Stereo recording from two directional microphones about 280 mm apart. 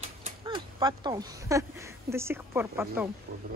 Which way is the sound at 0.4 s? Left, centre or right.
Centre.